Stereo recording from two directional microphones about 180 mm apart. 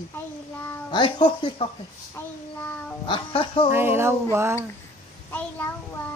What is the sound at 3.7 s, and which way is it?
Speech, 10° right (ahead or behind).